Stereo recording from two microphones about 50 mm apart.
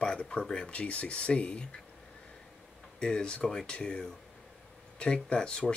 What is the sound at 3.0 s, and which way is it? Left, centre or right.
Speech, centre.